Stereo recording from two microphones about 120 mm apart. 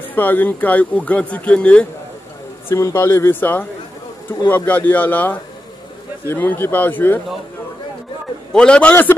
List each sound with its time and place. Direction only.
0.1 s speech: 15° left (ahead or behind)
2.7 s speech: 20° left (ahead or behind)
8.5 s speech: 10° left (ahead or behind)